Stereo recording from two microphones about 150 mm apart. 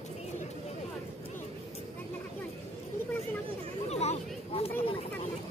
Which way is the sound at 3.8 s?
45° left (ahead or behind).